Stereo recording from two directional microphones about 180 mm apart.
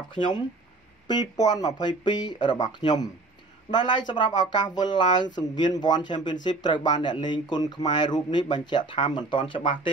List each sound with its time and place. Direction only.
0.1 s speech: 25° left (ahead or behind)